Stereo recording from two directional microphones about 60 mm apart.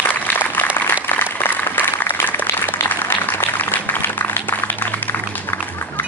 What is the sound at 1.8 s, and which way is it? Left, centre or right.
Applause, left.